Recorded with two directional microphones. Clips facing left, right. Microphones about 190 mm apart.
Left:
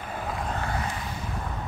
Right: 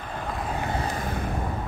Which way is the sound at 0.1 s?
5° left (ahead or behind).